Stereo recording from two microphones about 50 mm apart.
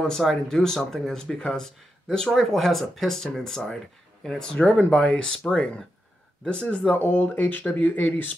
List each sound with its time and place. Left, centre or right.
0.0 s speech: centre
4.6 s speech: left
5.4 s speech: centre
7.0 s speech: left